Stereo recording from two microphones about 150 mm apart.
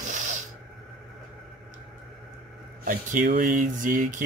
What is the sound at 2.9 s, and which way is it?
Speech, 70° right (ahead or behind).